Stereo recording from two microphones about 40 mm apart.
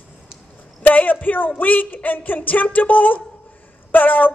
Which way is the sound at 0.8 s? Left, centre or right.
Left.